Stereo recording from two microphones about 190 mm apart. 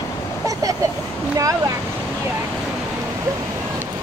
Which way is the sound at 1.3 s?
15° right (ahead or behind).